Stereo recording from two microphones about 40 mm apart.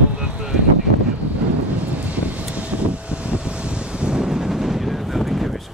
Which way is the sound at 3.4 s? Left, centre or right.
Right.